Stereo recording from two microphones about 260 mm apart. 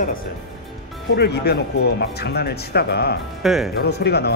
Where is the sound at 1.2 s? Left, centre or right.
Left.